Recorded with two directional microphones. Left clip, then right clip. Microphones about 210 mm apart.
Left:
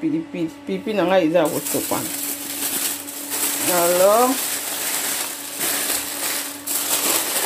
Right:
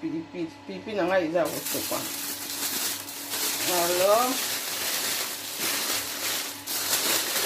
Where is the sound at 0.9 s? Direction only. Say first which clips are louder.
Left 7 dB; 50° left (ahead or behind).